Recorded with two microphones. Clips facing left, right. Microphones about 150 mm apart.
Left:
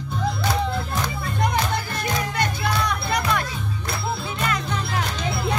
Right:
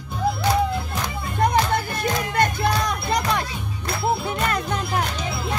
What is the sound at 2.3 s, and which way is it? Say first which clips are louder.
Music: right 4 dB; 50° right (ahead or behind).